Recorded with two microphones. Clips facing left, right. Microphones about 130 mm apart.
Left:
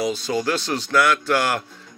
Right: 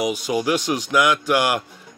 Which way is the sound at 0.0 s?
15° right (ahead or behind).